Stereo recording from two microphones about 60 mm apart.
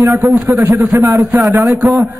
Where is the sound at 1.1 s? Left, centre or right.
Right.